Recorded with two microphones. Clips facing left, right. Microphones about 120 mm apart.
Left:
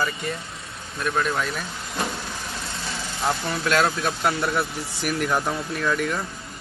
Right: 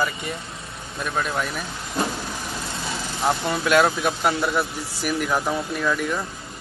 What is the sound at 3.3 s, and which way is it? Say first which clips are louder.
Speech: right 3 dB; 25° right (ahead or behind).